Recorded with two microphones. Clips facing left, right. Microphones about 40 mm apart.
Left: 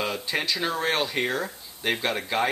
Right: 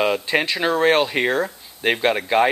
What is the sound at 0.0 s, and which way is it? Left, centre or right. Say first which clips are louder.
Speech: right 8 dB; right.